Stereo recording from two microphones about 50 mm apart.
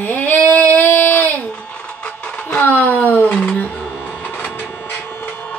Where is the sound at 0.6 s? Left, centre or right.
Left.